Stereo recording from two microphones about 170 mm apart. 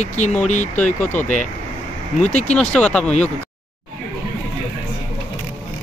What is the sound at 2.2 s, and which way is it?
Speech, 40° left (ahead or behind).